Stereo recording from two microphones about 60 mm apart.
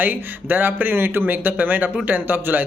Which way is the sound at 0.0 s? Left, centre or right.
Right.